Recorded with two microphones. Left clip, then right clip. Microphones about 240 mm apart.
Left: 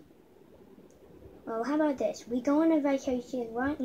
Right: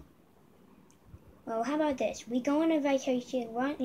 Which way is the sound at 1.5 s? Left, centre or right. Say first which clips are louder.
Left 1 dB; centre.